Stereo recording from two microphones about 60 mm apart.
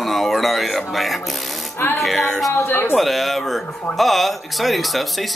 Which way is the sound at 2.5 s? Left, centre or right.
Left.